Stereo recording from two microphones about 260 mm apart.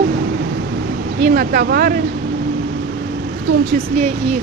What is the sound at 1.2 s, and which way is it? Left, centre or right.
Speech, right.